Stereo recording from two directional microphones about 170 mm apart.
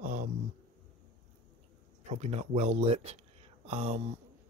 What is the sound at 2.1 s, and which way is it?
Speech, 40° right (ahead or behind).